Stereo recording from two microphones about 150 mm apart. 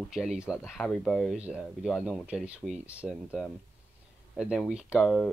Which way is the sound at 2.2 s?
10° right (ahead or behind).